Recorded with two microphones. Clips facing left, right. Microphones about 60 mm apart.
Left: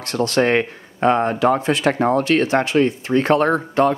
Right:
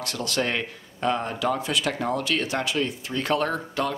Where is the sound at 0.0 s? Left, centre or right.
Left.